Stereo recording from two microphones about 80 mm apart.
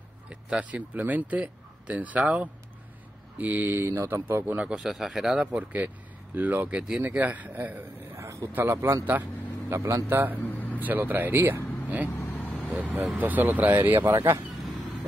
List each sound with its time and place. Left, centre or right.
0.3 s speech: centre
4.6 s speech: centre
8.2 s a sound: right
8.5 s a man's voice: right
10.4 s vehicle: left
10.8 s speech: right
12.1 s vehicle: left
12.7 s speech: right